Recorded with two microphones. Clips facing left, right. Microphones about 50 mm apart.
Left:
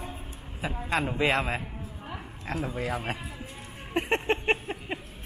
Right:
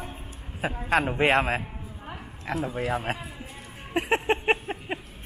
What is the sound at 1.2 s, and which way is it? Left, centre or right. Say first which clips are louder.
Speech: right 3 dB; right.